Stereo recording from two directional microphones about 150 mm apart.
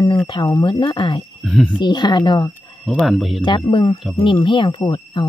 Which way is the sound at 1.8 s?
30° left (ahead or behind).